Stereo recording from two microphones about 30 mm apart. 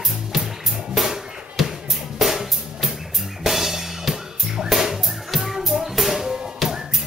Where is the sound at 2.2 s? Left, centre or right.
Centre.